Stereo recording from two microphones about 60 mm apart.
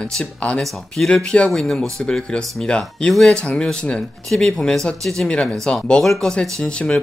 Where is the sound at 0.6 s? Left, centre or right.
Centre.